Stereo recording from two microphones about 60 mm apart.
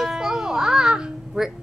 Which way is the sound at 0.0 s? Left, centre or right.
Centre.